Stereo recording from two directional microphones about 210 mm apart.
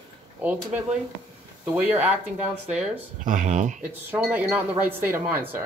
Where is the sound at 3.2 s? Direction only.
40° right (ahead or behind).